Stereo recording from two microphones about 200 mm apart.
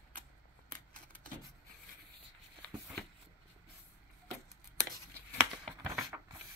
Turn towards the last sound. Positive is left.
turn(degrees=-15)  # may be behind; listen again after turning